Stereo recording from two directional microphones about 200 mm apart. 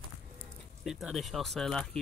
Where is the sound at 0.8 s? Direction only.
Centre (ahead or behind).